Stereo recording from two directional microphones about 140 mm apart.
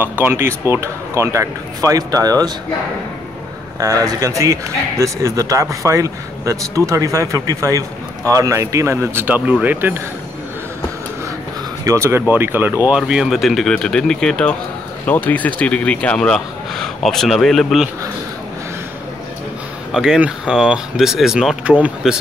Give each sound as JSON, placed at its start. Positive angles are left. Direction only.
{"t": 0.2, "sound": "speech", "side_deg": -15}
{"t": 3.8, "sound": "a man's voice", "side_deg": -25}
{"t": 11.8, "sound": "speech", "side_deg": -20}
{"t": 19.9, "sound": "speech", "side_deg": -5}